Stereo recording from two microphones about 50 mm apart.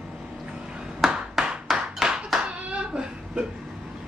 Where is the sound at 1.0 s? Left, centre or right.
Centre.